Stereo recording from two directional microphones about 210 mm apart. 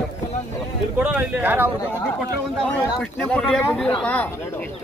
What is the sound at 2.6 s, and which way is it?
Speech, 5° left (ahead or behind).